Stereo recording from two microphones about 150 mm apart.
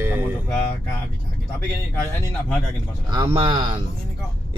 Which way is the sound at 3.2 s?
30° right (ahead or behind).